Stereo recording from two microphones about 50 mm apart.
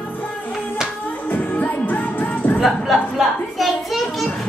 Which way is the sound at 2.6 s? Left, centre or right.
Centre.